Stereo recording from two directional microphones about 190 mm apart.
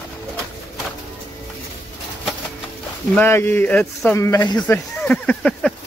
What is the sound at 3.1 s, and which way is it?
Speech, 10° left (ahead or behind).